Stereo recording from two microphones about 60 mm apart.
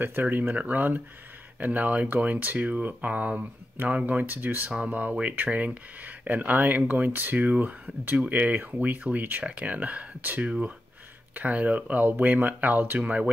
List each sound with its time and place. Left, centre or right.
0.0 s speech: right